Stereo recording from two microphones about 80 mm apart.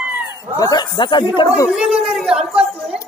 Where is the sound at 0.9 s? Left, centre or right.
Left.